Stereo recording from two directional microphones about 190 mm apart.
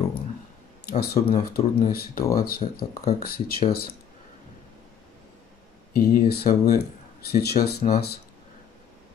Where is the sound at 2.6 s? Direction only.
35° left (ahead or behind).